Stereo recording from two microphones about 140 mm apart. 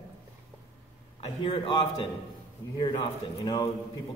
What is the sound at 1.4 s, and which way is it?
A man's voice, 40° left (ahead or behind).